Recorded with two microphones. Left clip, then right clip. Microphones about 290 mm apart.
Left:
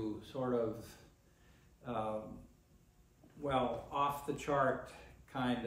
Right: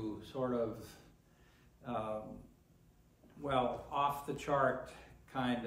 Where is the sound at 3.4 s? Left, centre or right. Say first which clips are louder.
Right 1 dB; centre.